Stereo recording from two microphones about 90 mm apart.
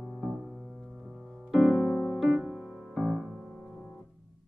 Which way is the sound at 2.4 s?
5° right (ahead or behind).